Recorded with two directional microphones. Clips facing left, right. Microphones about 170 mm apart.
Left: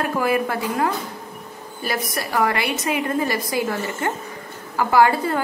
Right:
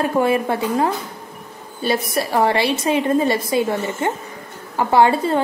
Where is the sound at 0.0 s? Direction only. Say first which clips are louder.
Right 3 dB; 25° right (ahead or behind).